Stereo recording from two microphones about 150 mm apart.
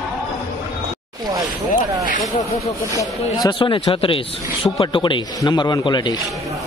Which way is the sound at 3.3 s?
30° left (ahead or behind).